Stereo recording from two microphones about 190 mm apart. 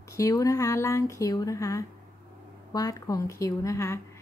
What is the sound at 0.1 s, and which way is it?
A woman's voice, 15° left (ahead or behind).